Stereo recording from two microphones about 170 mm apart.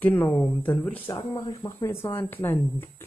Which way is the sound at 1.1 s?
25° left (ahead or behind).